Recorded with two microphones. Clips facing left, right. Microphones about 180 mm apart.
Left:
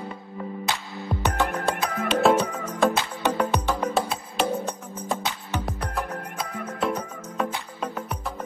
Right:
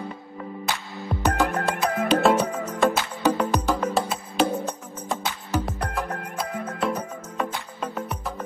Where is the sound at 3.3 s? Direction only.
Centre (ahead or behind).